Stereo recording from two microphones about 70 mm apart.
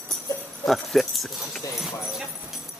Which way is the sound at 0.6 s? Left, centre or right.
Centre.